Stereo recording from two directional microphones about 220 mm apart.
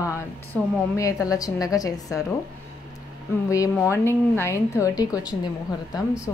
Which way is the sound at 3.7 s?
10° left (ahead or behind).